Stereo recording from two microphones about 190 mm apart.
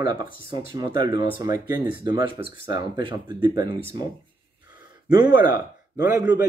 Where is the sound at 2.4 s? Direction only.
25° right (ahead or behind).